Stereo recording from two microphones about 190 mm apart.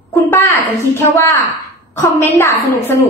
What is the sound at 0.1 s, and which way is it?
A child's voice, 10° left (ahead or behind).